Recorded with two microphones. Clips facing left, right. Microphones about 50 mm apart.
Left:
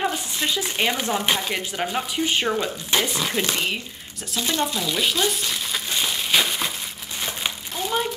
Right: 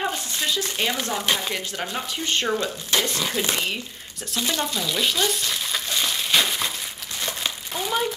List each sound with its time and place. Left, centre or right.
0.6 s speech: centre
4.3 s frying: centre
5.9 s crumpling: centre
7.2 s a sound: centre